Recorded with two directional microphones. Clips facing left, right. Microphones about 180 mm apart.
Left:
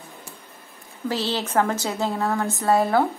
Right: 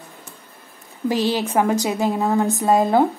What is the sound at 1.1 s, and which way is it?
A woman's voice, 15° right (ahead or behind).